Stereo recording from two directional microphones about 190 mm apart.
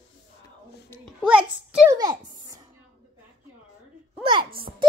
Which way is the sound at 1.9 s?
20° right (ahead or behind).